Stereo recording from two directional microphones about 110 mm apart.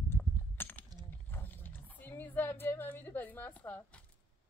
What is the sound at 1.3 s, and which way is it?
Roaring cats, 15° left (ahead or behind).